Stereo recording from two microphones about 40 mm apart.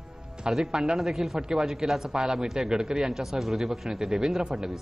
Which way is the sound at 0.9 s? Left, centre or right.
Centre.